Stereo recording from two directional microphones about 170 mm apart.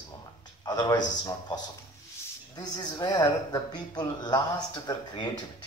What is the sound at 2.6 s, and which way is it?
Speech, 25° left (ahead or behind).